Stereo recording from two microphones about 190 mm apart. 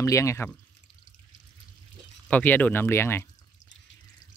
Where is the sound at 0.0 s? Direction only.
15° left (ahead or behind).